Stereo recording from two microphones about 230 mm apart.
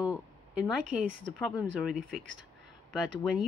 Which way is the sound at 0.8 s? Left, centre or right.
Right.